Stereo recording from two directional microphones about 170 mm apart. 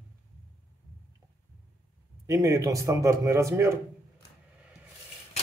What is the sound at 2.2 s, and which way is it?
A man's voice, 20° right (ahead or behind).